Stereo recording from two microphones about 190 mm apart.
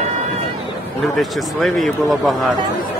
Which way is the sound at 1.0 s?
Centre (ahead or behind).